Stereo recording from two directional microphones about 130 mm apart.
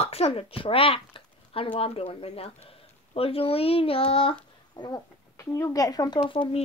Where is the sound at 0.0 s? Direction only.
50° left (ahead or behind).